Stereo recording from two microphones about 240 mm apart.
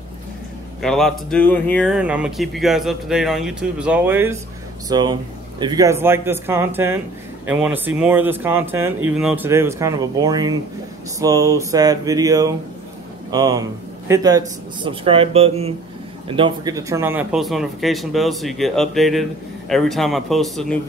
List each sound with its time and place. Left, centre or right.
0.8 s speech: centre